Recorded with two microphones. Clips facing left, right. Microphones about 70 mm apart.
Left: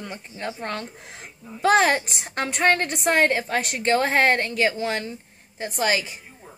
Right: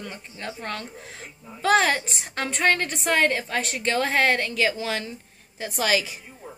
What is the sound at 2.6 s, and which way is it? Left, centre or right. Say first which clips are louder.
A woman's voice: left 2 dB; left.